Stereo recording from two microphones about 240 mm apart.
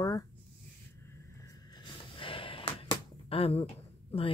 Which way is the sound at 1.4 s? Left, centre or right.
Centre.